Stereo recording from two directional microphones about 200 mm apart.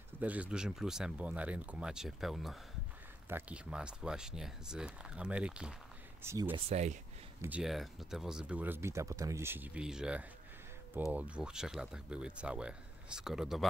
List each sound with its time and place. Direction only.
0.2 s speech: 5° right (ahead or behind)
6.5 s speech: 35° right (ahead or behind)
7.4 s speech: 5° right (ahead or behind)